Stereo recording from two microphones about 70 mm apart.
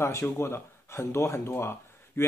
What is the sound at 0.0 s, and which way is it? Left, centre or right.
Speech, left.